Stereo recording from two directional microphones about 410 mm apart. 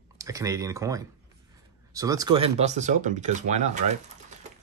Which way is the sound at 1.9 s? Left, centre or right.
Centre.